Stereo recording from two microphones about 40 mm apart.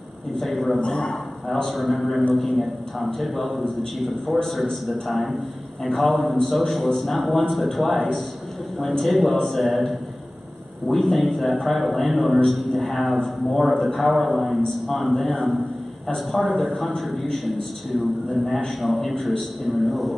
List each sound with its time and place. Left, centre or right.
0.4 s a man's voice: centre
0.7 s a man's voice: left
1.5 s a man's voice: centre